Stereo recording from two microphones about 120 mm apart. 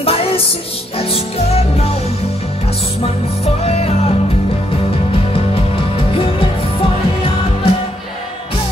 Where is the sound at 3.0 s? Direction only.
60° left (ahead or behind).